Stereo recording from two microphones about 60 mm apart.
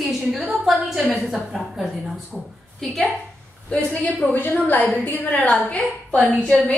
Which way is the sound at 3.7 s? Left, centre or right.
Centre.